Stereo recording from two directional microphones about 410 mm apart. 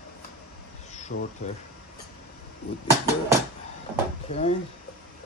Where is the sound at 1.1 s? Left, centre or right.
Left.